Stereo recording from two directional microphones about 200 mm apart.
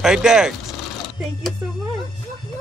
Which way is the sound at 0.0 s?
5° right (ahead or behind).